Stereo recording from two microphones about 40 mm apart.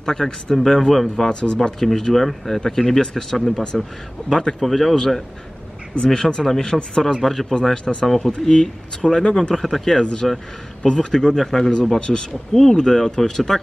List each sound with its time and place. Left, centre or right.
0.0 s speech: centre
4.6 s speech: centre
9.7 s a man's voice: centre
10.9 s speech: centre